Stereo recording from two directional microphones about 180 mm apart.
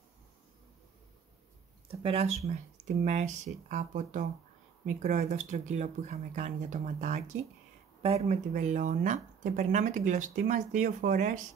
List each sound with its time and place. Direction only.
1.9 s speech: 30° right (ahead or behind)